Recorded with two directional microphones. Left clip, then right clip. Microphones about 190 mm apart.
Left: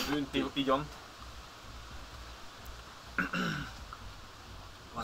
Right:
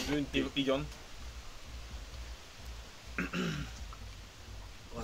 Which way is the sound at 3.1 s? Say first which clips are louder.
Left 4 dB; 20° right (ahead or behind).